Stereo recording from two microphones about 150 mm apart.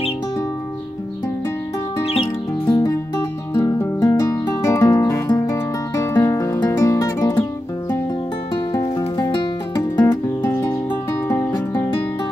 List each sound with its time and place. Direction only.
2.6 s music: 25° left (ahead or behind)
8.7 s music: 25° left (ahead or behind)
10.4 s music: 15° left (ahead or behind)